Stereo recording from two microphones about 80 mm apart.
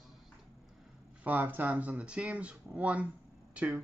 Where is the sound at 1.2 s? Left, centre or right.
Right.